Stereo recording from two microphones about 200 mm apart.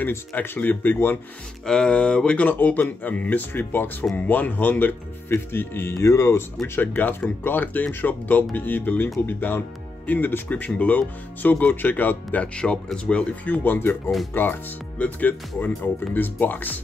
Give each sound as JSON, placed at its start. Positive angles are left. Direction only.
{"t": 0.0, "sound": "speech", "side_deg": 10}